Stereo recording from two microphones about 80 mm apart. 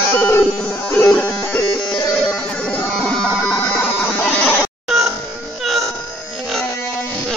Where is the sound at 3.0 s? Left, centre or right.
Centre.